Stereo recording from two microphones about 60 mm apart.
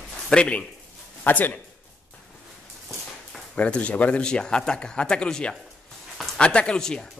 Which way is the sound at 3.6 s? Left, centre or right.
Left.